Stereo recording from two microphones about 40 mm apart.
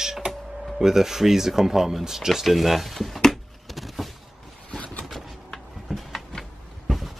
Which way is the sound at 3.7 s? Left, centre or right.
Centre.